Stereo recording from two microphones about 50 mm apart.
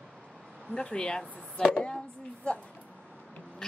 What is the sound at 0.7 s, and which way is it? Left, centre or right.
Speech, centre.